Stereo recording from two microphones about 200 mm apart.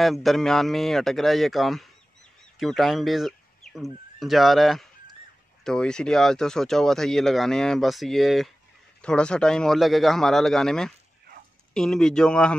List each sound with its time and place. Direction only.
0.0 s speech: centre (ahead or behind)